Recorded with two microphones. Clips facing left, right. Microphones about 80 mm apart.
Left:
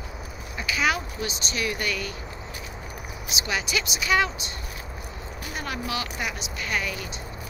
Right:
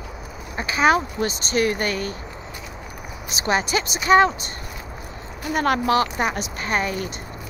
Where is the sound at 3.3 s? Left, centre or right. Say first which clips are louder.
Right 7 dB; right.